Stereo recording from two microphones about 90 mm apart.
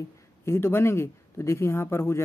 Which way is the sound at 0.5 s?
25° left (ahead or behind).